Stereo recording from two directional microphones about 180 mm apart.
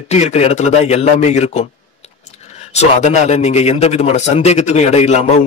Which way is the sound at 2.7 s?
40° left (ahead or behind).